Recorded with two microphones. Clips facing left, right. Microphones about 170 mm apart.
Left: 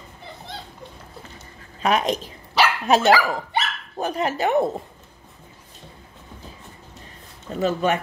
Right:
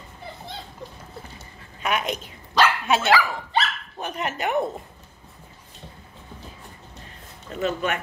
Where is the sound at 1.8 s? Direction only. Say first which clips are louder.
Left 5 dB; 35° left (ahead or behind).